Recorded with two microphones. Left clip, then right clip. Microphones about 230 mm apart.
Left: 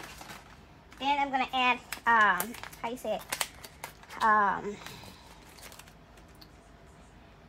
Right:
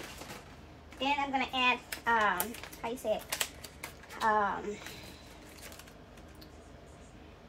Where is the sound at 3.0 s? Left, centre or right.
Centre.